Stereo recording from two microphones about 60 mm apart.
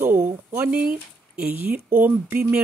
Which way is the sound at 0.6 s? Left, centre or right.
Right.